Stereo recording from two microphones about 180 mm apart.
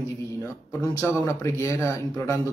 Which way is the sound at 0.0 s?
15° left (ahead or behind).